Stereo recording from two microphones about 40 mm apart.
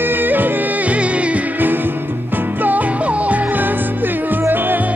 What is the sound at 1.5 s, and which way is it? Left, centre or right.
Music, right.